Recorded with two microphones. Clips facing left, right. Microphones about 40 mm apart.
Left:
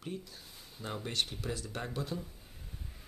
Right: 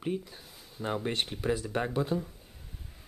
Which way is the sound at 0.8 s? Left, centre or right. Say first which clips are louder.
Right 5 dB; right.